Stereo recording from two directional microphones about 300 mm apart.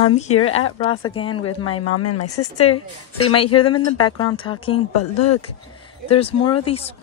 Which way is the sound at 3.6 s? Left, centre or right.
Centre.